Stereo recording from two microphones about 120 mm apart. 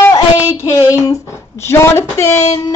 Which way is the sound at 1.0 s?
25° left (ahead or behind).